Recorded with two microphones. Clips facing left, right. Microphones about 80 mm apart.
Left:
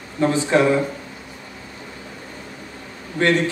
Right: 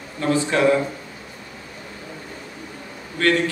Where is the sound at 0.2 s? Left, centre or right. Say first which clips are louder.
Left 2 dB; left.